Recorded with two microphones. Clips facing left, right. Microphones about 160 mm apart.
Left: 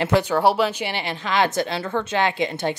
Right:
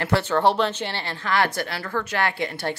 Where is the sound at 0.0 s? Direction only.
15° left (ahead or behind).